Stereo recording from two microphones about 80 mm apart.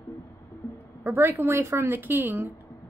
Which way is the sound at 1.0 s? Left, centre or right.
Right.